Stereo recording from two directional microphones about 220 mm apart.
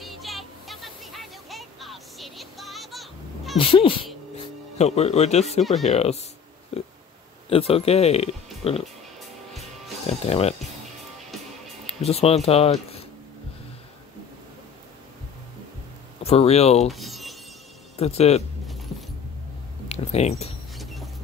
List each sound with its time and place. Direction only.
0.0 s a sound: centre (ahead or behind)
3.5 s speech: 25° left (ahead or behind)
5.6 s speech: centre (ahead or behind)
5.9 s speech: 30° left (ahead or behind)
7.4 s speech: 25° left (ahead or behind)
10.0 s speech: 30° left (ahead or behind)
11.8 s speech: 30° left (ahead or behind)
16.2 s speech: 25° left (ahead or behind)
16.9 s a sound: centre (ahead or behind)
17.9 s speech: 30° left (ahead or behind)
18.7 s keys jangling: centre (ahead or behind)
19.9 s speech: 30° left (ahead or behind)
20.7 s rodents: centre (ahead or behind)